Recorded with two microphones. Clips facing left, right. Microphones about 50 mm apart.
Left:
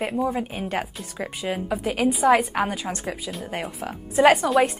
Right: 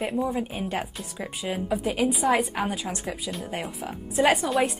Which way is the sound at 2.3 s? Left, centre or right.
Left.